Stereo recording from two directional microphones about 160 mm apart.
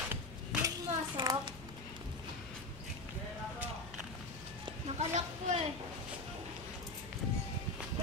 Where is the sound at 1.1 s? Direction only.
30° right (ahead or behind).